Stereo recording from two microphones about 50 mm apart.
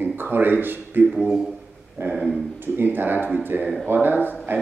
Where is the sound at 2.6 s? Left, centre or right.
Right.